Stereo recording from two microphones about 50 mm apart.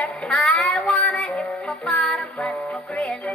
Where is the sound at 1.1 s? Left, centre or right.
Centre.